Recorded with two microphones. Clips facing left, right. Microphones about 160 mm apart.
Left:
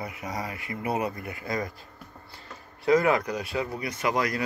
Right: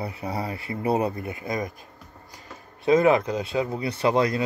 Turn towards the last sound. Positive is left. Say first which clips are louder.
# right 5 dB
turn(degrees=-30)  # may be behind; listen again after turning